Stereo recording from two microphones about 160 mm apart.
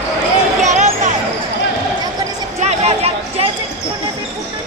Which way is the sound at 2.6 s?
40° right (ahead or behind).